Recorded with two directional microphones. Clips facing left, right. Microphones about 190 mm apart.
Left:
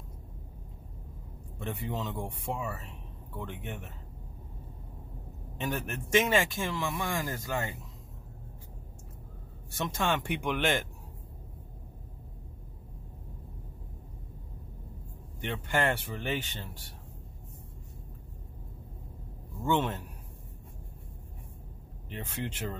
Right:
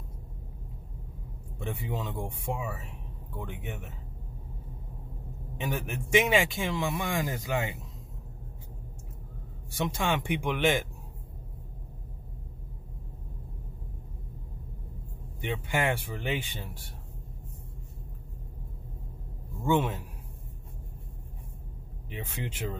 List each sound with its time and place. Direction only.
1.6 s speech: 10° right (ahead or behind)
5.6 s speech: 10° right (ahead or behind)
9.8 s speech: 10° right (ahead or behind)
15.4 s speech: 10° right (ahead or behind)
19.6 s speech: 10° right (ahead or behind)
22.1 s speech: 10° right (ahead or behind)